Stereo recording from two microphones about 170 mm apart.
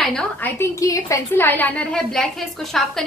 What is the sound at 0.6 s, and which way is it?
A woman's voice, 20° left (ahead or behind).